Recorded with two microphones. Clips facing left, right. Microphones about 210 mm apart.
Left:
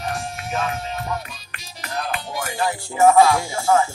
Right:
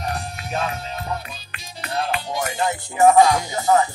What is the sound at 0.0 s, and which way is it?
Music, 35° right (ahead or behind).